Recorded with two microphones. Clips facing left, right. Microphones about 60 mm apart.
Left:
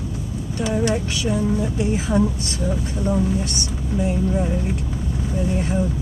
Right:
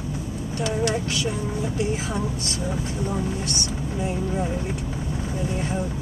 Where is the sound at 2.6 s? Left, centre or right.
Centre.